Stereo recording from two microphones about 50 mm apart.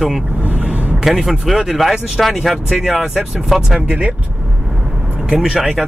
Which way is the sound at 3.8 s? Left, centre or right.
Right.